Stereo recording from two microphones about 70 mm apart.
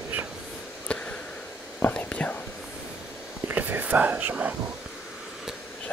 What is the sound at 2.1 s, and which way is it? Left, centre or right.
Whispering, centre.